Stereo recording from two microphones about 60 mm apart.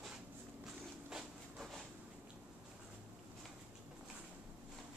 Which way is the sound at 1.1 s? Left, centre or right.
Centre.